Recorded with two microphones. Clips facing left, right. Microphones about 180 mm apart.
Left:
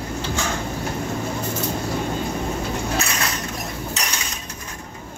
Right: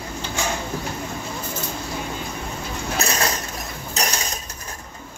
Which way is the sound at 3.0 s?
40° right (ahead or behind).